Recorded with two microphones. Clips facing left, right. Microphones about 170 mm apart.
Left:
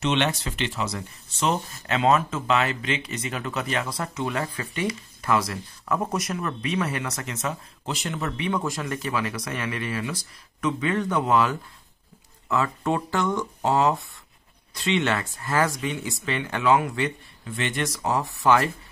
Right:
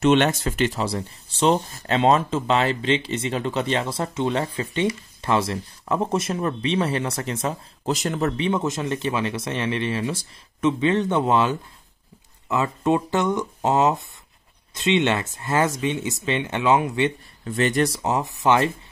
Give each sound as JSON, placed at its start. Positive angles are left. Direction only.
{"t": 0.0, "sound": "speech", "side_deg": -50}
{"t": 8.5, "sound": "speech", "side_deg": -20}
{"t": 17.5, "sound": "speech", "side_deg": -40}
{"t": 18.0, "sound": "speech", "side_deg": -20}